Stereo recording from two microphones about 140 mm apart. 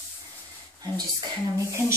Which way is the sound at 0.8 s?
25° right (ahead or behind).